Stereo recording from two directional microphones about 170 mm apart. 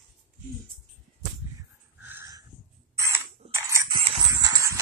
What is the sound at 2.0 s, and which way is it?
Dog, 15° right (ahead or behind).